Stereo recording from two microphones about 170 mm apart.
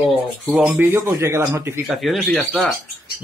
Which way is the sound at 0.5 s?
Centre (ahead or behind).